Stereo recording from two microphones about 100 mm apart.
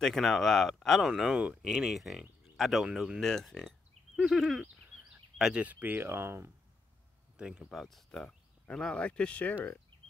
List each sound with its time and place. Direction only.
0.0 s speech: 5° left (ahead or behind); by 6.5 s 25° right (ahead or behind)
7.3 s speech: 10° right (ahead or behind)
7.7 s speech: centre (ahead or behind)